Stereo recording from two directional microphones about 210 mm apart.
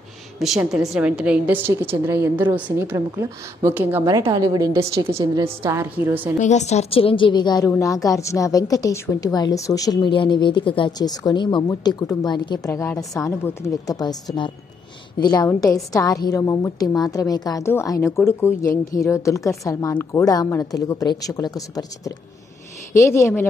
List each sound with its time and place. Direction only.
0.4 s a woman's voice: centre (ahead or behind)
6.4 s a woman's voice: 35° left (ahead or behind); by 14.1 s 15° left (ahead or behind)
15.1 s a woman's voice: 20° left (ahead or behind)